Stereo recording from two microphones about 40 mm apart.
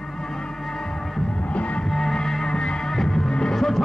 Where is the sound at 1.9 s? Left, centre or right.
Centre.